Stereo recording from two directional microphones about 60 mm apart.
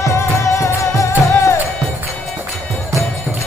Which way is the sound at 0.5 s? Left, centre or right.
Left.